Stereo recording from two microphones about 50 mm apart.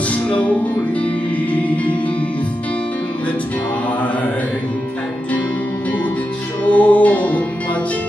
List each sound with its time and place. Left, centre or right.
0.1 s music: left
6.6 s music: left